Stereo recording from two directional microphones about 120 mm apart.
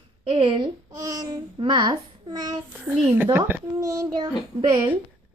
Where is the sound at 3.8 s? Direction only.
30° right (ahead or behind).